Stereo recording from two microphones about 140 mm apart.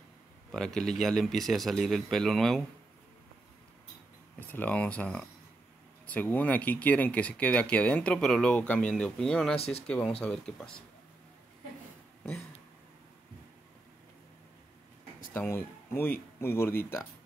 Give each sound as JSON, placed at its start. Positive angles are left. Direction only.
{"t": 0.5, "sound": "speech", "side_deg": 5}
{"t": 4.4, "sound": "speech", "side_deg": 15}
{"t": 9.6, "sound": "speech", "side_deg": 45}
{"t": 9.8, "sound": "speech", "side_deg": 5}
{"t": 15.3, "sound": "speech", "side_deg": 15}